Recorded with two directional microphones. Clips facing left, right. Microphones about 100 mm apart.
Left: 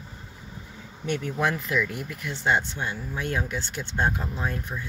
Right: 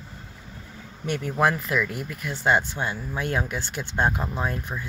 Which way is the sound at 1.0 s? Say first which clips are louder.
Right 3 dB; 45° right (ahead or behind).